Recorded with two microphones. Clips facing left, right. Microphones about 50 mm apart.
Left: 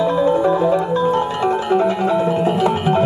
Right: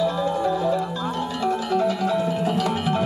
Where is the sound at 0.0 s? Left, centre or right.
Left.